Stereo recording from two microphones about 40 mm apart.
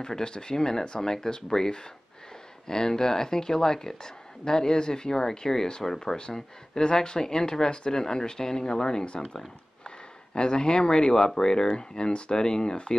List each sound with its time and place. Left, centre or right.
0.0 s speech: centre